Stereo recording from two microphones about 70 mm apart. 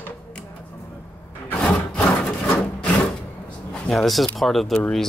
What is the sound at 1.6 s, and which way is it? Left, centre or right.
Wood, centre.